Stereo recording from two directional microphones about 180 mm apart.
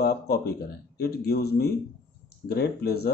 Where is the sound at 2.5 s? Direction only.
60° left (ahead or behind).